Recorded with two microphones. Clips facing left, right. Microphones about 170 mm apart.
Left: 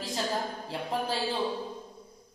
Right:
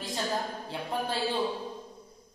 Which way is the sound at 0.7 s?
Centre (ahead or behind).